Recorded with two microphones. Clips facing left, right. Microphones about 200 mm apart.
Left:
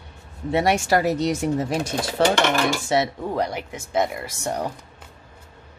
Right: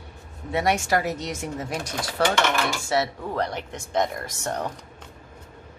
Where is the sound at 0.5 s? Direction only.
30° left (ahead or behind); by 4.7 s 10° left (ahead or behind).